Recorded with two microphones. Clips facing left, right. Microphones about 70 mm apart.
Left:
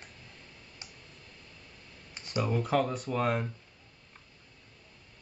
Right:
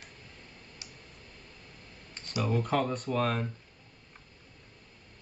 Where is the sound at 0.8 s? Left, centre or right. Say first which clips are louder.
Left 2 dB; left.